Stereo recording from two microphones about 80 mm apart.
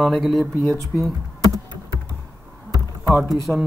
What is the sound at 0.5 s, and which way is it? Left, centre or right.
Speech, left.